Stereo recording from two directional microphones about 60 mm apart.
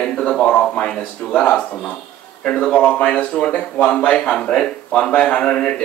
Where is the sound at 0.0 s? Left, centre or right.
Centre.